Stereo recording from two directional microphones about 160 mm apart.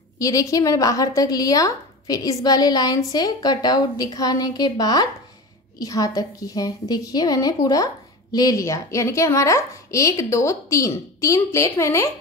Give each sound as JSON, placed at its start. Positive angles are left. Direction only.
{"t": 0.2, "sound": "a woman's voice", "side_deg": 20}